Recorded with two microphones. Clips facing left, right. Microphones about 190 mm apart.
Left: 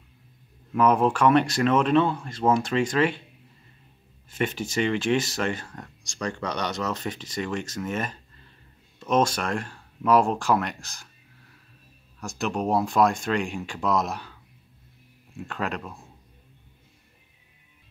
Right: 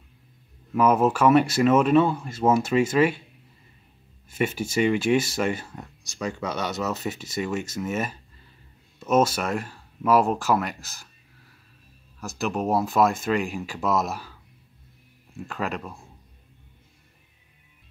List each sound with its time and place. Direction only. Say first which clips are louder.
0.7 s speech: right 1 dB; 5° right (ahead or behind)
4.3 s speech: right 2 dB; 10° right (ahead or behind)
12.2 s speech: right 1 dB; centre (ahead or behind)